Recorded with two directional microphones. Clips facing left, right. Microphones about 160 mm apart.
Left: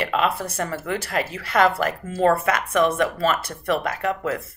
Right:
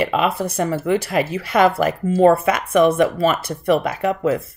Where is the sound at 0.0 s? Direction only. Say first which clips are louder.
Right 4 dB; 15° right (ahead or behind).